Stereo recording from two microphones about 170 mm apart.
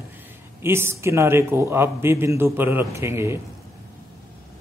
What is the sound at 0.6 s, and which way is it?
A man's voice, 15° right (ahead or behind).